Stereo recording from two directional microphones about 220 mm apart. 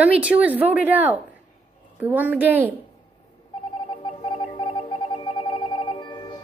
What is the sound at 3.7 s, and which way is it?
Telephone, 20° left (ahead or behind).